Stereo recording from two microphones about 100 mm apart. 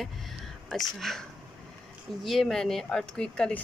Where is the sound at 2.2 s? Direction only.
Centre (ahead or behind).